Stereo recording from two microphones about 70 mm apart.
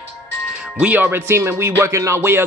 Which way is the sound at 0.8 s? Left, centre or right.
Right.